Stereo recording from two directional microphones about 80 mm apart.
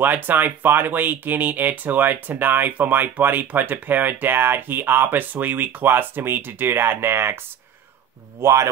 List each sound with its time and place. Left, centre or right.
0.0 s speech: right
8.4 s speech: right